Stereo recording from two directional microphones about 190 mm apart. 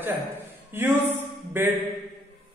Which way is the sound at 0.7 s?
10° right (ahead or behind).